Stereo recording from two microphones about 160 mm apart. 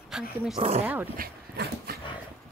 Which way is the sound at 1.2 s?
75° right (ahead or behind).